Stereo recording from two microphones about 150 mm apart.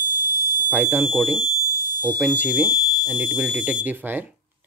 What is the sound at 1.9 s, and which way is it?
Smoke detector, 10° left (ahead or behind).